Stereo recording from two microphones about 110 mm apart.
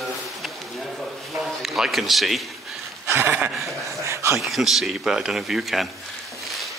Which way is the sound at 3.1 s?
20° right (ahead or behind).